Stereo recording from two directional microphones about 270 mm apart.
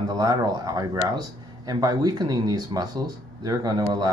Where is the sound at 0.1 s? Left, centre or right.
Centre.